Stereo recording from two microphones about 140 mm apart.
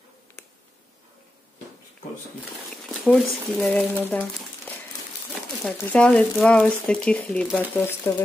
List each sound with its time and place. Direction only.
3.1 s speech: 5° left (ahead or behind)
3.8 s speech: 15° right (ahead or behind)
5.6 s speech: 5° left (ahead or behind)